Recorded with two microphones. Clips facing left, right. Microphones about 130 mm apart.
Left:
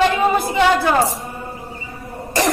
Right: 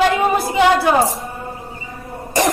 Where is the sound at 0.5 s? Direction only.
15° right (ahead or behind).